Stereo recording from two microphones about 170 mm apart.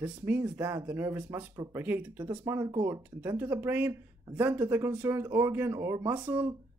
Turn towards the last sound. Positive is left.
turn(degrees=-10)  # may be behind; listen again after turning